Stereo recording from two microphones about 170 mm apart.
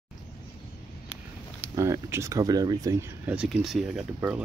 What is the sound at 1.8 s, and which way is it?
Speech, 15° right (ahead or behind).